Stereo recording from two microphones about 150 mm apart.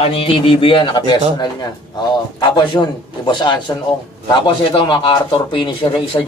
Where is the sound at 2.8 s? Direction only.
20° left (ahead or behind).